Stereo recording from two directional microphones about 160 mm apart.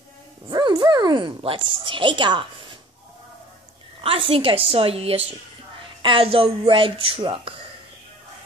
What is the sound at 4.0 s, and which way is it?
A woman's voice, 35° right (ahead or behind).